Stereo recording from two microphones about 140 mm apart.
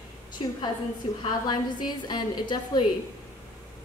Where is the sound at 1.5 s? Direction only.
30° left (ahead or behind).